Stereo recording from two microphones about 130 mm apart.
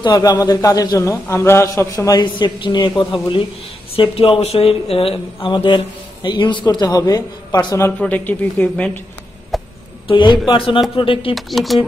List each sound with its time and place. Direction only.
0.0 s a man's voice: 30° left (ahead or behind)
8.0 s speech: 10° left (ahead or behind)
9.5 s a sound: centre (ahead or behind)
10.0 s a man's voice: 35° left (ahead or behind)
11.3 s speech: centre (ahead or behind)